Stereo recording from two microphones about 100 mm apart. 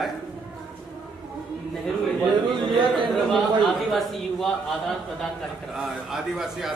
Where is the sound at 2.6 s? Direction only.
45° right (ahead or behind).